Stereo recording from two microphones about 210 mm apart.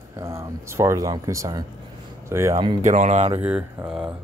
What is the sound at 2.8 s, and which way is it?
Speech, 35° right (ahead or behind).